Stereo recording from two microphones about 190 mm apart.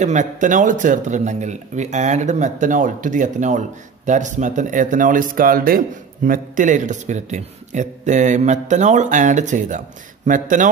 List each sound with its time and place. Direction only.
0.0 s speech: 40° right (ahead or behind)